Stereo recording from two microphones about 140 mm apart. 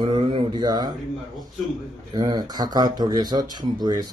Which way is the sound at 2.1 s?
25° right (ahead or behind).